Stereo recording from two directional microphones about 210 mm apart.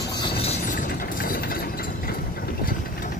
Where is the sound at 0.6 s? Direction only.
40° left (ahead or behind).